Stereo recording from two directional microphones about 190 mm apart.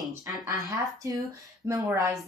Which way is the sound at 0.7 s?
20° right (ahead or behind).